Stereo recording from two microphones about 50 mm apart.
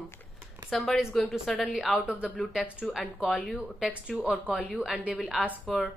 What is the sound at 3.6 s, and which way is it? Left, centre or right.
A woman's voice, centre.